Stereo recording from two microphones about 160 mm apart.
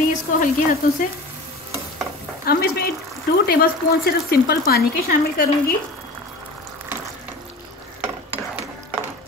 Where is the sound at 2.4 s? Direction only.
70° left (ahead or behind).